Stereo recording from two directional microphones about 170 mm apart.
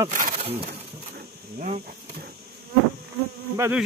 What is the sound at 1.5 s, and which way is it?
Speech, 50° right (ahead or behind).